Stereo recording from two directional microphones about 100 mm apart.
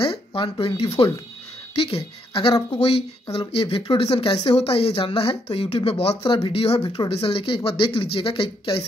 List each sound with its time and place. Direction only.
0.0 s speech: 65° left (ahead or behind)
2.8 s speech: 85° left
7.1 s speech: 70° left (ahead or behind)